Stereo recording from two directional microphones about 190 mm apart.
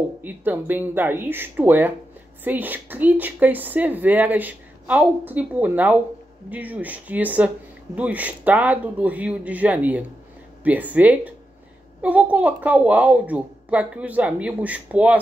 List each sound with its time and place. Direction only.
0.2 s a woman's voice: 10° right (ahead or behind)